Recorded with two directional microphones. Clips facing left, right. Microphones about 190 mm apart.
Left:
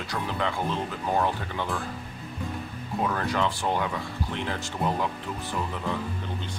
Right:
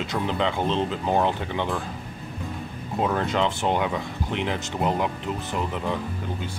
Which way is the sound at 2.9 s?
20° right (ahead or behind).